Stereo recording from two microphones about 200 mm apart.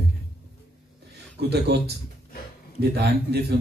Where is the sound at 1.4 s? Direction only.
55° right (ahead or behind).